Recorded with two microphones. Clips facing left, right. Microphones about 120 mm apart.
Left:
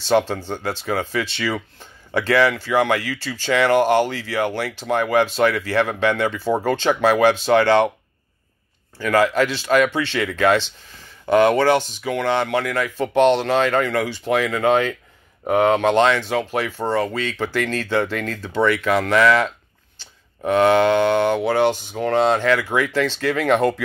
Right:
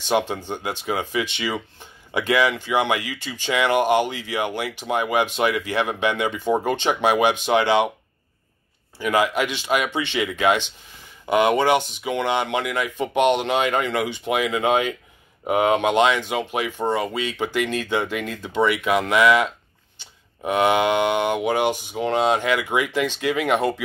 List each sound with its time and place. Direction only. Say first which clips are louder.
0.0 s speech: left 4 dB; 15° right (ahead or behind)
8.9 s speech: left 3 dB; 15° right (ahead or behind)